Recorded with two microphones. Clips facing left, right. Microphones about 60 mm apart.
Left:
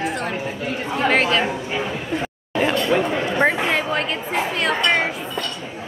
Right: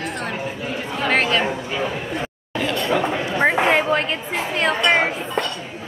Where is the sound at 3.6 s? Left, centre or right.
Right.